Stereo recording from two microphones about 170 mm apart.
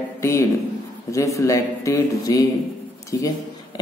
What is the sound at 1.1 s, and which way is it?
A man's voice, 20° left (ahead or behind).